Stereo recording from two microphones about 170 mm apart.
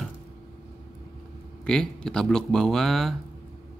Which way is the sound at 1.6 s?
5° left (ahead or behind).